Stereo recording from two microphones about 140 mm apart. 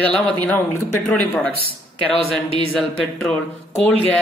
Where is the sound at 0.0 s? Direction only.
10° left (ahead or behind).